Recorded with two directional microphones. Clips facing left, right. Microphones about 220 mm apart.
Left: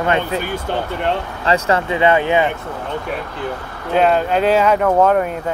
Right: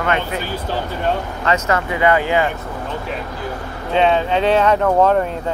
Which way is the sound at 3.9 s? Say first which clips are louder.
Left 1 dB; 5° left (ahead or behind).